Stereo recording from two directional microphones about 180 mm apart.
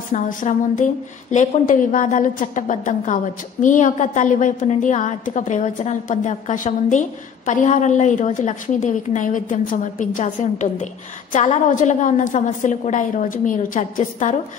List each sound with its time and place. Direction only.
0.1 s a woman's voice: 45° left (ahead or behind)